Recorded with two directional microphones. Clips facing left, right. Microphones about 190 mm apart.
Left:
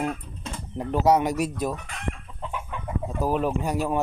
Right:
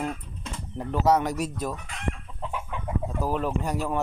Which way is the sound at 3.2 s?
15° left (ahead or behind).